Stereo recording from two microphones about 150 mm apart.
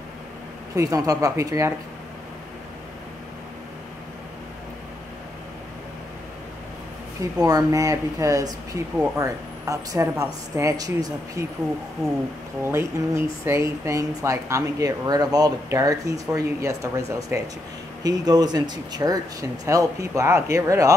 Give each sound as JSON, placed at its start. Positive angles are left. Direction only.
{"t": 0.7, "sound": "speech", "side_deg": -25}
{"t": 7.2, "sound": "speech", "side_deg": -25}
{"t": 12.6, "sound": "speech", "side_deg": -15}